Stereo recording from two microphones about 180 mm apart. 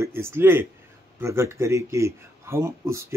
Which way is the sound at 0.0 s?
15° right (ahead or behind).